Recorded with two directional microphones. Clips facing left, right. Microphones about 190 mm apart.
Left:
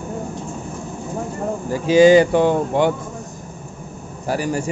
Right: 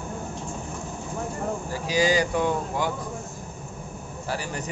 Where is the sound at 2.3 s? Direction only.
80° left.